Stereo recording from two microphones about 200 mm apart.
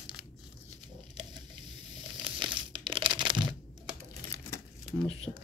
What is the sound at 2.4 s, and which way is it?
Crumpling, 25° right (ahead or behind).